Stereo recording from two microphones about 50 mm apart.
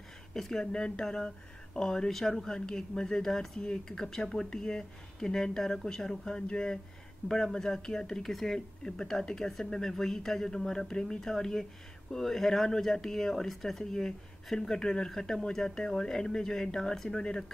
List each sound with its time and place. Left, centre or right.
0.3 s speech: centre
7.2 s speech: left
7.5 s speech: centre